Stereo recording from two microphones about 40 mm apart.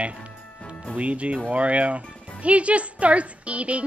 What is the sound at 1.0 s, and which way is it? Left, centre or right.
A woman's voice, right.